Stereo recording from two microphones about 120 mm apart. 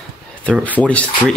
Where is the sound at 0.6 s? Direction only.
10° left (ahead or behind).